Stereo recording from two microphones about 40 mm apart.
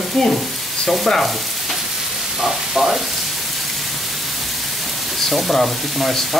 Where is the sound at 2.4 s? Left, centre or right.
Centre.